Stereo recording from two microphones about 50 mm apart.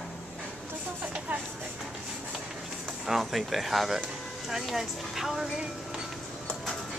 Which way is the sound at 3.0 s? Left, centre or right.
Centre.